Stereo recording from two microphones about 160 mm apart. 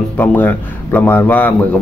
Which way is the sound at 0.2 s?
10° left (ahead or behind).